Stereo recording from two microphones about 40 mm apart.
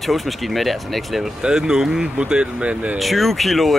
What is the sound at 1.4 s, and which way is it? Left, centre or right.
Speech, centre.